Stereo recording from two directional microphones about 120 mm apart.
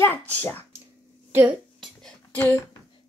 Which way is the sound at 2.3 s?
20° left (ahead or behind).